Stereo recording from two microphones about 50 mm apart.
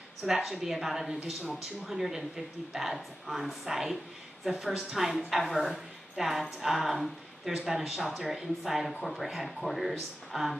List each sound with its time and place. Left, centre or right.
0.2 s a woman's voice: centre